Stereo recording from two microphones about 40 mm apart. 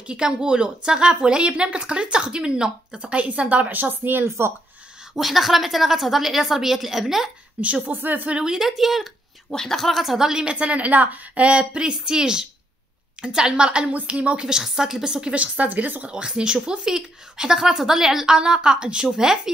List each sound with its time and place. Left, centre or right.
0.0 s a woman's voice: right
4.0 s speech: right
5.2 s a woman's voice: centre
7.6 s a woman's voice: right
7.9 s a woman's voice: right
8.5 s a woman's voice: centre
9.5 s a woman's voice: centre
10.1 s a woman's voice: centre
10.5 s a woman's voice: right
13.8 s a woman's voice: right
14.6 s a woman's voice: centre
15.3 s a woman's voice: right
16.0 s a woman's voice: right